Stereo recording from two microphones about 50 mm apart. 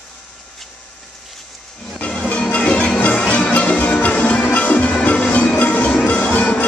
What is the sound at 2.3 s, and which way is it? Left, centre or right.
Music, left.